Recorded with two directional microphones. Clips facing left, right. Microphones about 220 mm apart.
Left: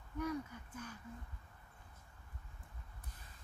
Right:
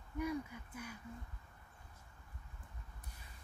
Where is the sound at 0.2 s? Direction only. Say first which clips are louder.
Right 1 dB; 10° right (ahead or behind).